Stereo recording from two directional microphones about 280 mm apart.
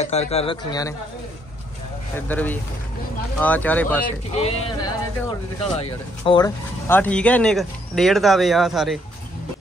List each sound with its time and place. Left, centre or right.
0.0 s speech: left
2.1 s speech: centre